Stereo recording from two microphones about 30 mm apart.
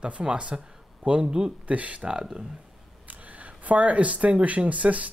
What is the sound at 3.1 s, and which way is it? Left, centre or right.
Speech, right.